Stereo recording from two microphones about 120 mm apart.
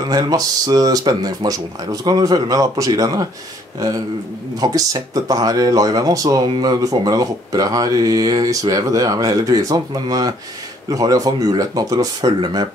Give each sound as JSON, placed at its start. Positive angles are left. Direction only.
{"t": 0.0, "sound": "speech", "side_deg": -30}
{"t": 4.6, "sound": "speech", "side_deg": -30}